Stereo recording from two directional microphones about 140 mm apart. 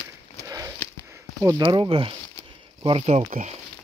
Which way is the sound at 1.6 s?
40° right (ahead or behind).